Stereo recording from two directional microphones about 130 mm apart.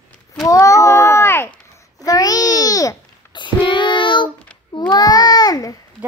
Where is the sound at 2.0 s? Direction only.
30° left (ahead or behind).